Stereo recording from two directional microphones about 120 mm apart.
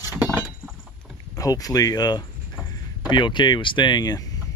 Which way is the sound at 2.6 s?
5° right (ahead or behind).